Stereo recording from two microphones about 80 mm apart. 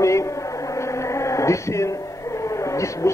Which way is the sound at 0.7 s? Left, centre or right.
Left.